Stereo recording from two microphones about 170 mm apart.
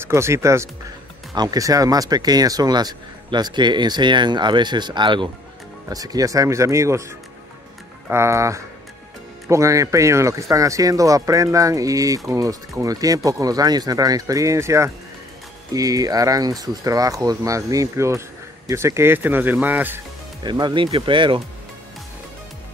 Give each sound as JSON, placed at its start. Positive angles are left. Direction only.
{"t": 0.0, "sound": "speech", "side_deg": -15}
{"t": 20.4, "sound": "speech", "side_deg": -25}